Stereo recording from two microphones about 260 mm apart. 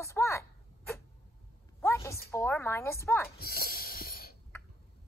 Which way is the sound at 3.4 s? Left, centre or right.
Left.